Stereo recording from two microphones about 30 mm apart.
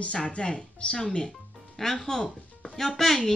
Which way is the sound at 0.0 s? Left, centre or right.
Left.